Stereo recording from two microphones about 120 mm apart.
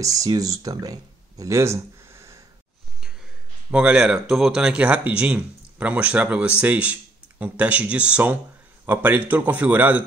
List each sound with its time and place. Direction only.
0.0 s speech: 30° right (ahead or behind)
1.4 s a sound: 25° right (ahead or behind)
3.7 s speech: 10° right (ahead or behind)